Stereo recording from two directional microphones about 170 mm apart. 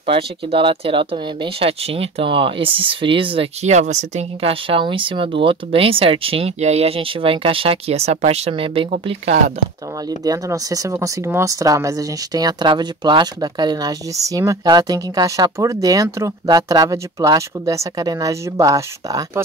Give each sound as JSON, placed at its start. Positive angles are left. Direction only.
{"t": 0.0, "sound": "speech", "side_deg": -35}
{"t": 10.0, "sound": "speech", "side_deg": -20}